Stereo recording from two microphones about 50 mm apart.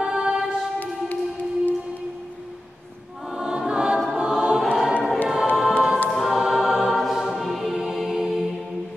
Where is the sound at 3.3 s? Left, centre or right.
Centre.